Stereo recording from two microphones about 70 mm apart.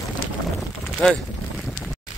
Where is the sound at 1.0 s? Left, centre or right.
Centre.